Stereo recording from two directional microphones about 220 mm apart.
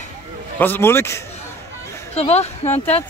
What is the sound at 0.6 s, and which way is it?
Speech, 10° left (ahead or behind).